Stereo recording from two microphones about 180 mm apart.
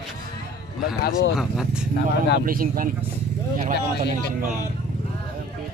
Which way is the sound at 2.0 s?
70° left (ahead or behind).